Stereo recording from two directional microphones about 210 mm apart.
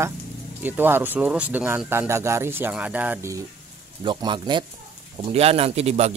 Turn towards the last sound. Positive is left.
turn(degrees=-30)  # may be behind; listen again after turning